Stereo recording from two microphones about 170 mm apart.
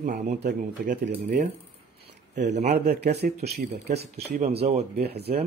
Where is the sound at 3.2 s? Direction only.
55° right (ahead or behind).